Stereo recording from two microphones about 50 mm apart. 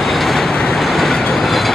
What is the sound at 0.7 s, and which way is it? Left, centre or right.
Train, centre.